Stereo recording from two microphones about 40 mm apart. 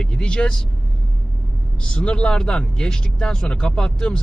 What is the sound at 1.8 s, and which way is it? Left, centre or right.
A man's voice, left.